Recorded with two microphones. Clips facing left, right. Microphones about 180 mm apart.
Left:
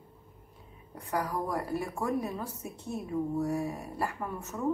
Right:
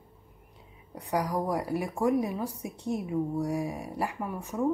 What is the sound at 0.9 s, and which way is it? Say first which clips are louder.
A woman's voice: right 3 dB; 15° right (ahead or behind).